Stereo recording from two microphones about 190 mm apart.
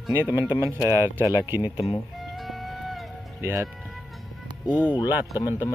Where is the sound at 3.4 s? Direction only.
15° right (ahead or behind).